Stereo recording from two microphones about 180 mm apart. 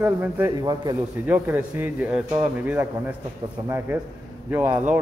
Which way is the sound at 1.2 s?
10° right (ahead or behind).